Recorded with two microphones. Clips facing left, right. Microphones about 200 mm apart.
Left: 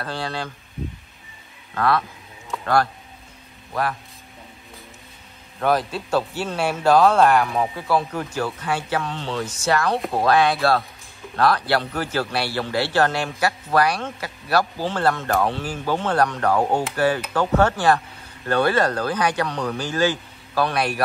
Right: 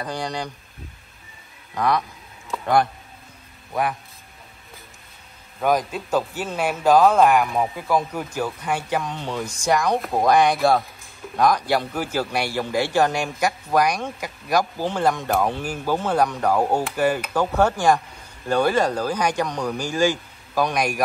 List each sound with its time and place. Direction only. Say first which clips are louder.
0.0 s speech: right 1 dB; 15° right (ahead or behind)
1.8 s speech: left 1 dB; 15° right (ahead or behind)
5.6 s speech: even; 10° right (ahead or behind)